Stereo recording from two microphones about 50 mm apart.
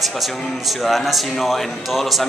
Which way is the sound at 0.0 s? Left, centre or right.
Centre.